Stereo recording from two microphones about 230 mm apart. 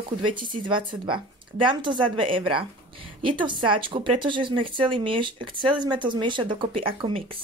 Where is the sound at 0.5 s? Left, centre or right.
Right.